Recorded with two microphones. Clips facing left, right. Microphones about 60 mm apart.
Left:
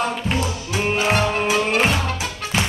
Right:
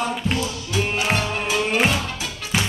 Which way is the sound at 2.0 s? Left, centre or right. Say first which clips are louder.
Left 4 dB; left.